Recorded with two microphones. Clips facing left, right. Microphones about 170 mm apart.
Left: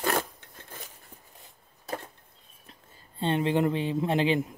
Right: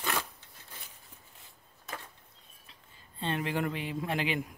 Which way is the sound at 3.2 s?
30° left (ahead or behind).